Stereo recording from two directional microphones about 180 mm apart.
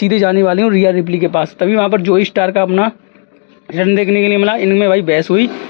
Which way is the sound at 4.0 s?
Centre (ahead or behind).